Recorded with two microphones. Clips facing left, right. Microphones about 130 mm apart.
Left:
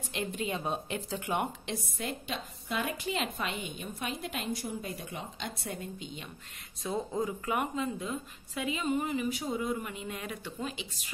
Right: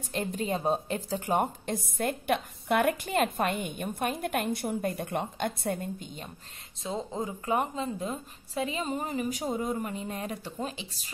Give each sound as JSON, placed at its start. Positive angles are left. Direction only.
{"t": 0.1, "sound": "a woman's voice", "side_deg": -40}
{"t": 6.8, "sound": "a woman's voice", "side_deg": -20}